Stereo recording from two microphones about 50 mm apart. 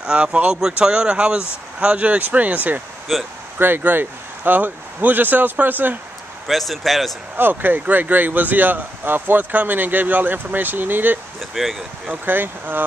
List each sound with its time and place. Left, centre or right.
0.0 s speech: centre
3.1 s speech: centre
3.5 s speech: right
6.4 s speech: centre
7.3 s speech: right
11.6 s speech: centre
12.1 s speech: right